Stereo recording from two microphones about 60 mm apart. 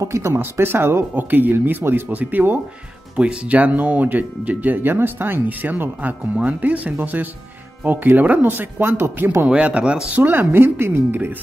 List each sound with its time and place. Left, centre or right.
0.0 s speech: right
0.4 s speech: right
3.2 s speech: centre; by 9.5 s right
9.5 s speech: centre
10.0 s speech: right